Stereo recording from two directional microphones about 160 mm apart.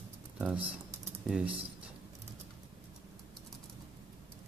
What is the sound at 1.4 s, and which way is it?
Speech, 35° right (ahead or behind).